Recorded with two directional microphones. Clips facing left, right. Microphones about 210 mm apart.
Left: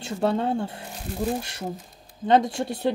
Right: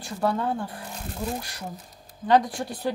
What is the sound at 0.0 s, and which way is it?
Speech, 25° left (ahead or behind).